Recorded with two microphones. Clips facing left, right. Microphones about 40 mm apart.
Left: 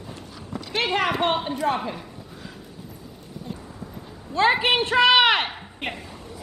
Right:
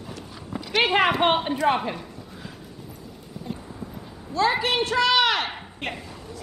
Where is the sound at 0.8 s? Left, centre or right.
Right.